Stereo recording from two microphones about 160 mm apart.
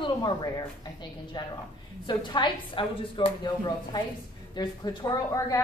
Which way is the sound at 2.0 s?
30° left (ahead or behind).